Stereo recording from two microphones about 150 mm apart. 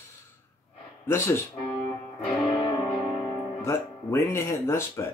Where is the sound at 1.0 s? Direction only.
15° left (ahead or behind).